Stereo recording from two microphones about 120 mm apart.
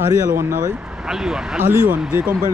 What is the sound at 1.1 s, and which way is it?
Speech, 5° right (ahead or behind).